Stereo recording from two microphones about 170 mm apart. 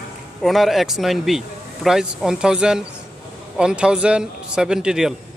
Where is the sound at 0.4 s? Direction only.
Centre (ahead or behind).